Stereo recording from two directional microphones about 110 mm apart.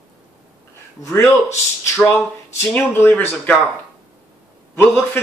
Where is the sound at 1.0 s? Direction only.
25° left (ahead or behind).